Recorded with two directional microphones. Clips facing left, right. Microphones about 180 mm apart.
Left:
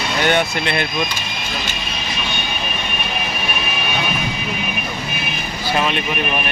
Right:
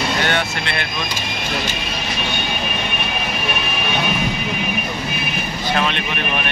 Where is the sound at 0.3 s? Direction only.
15° left (ahead or behind).